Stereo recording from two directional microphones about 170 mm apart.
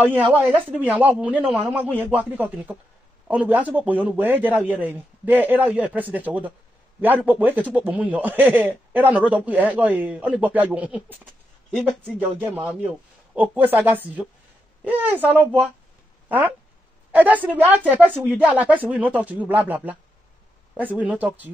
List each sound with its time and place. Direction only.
0.3 s a man's voice: 10° right (ahead or behind)
12.2 s a man's voice: 10° right (ahead or behind)